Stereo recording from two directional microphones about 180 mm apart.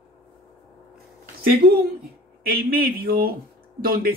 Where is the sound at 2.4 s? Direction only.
55° right (ahead or behind).